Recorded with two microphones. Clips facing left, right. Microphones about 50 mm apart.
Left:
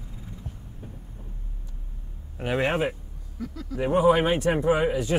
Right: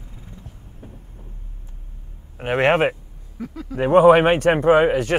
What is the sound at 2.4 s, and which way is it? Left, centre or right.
Speech, right.